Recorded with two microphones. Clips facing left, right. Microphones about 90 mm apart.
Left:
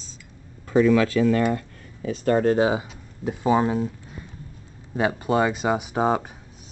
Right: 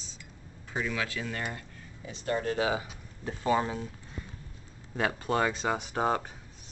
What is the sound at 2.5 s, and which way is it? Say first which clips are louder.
Speech: left 8 dB; 30° left (ahead or behind).